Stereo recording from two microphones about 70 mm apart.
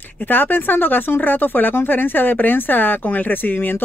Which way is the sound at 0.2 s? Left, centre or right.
Left.